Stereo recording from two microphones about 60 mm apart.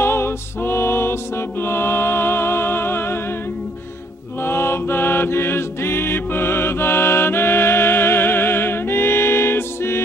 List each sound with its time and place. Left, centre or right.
0.0 s music: left
4.4 s mantra: left